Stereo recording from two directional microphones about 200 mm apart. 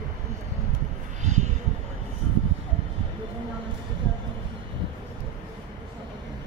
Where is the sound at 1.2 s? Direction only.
35° right (ahead or behind).